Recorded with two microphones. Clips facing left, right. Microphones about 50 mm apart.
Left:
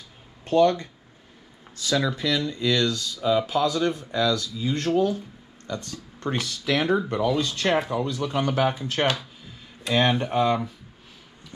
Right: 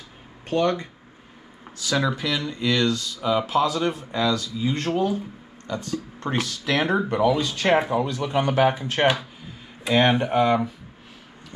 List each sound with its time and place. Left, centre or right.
0.5 s speech: right
1.9 s speech: right